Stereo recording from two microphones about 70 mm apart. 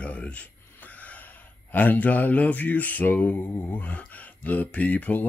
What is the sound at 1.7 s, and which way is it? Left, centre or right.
Mantra, left.